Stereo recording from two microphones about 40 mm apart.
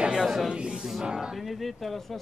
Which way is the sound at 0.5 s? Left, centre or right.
Right.